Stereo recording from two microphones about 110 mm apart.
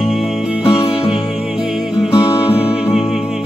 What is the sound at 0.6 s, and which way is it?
Music, 60° left (ahead or behind).